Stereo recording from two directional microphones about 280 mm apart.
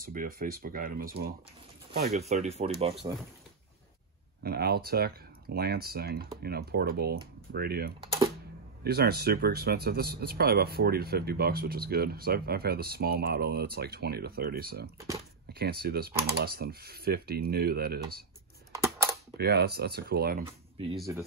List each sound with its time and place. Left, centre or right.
0.1 s speech: right
4.4 s speech: right
8.0 s typing: centre
8.8 s speech: right
15.0 s speech: centre
15.8 s speech: right
18.7 s a sound: centre
19.3 s speech: right
20.4 s speech: centre
20.9 s speech: centre